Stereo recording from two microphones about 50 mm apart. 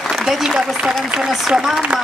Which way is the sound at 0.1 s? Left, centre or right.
Centre.